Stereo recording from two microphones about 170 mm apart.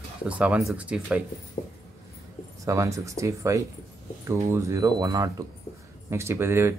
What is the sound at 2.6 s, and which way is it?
Speech, 20° right (ahead or behind).